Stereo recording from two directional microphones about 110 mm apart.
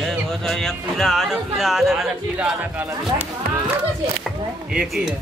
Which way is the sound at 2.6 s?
20° right (ahead or behind).